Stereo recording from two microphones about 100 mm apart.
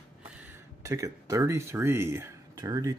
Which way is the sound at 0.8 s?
30° right (ahead or behind).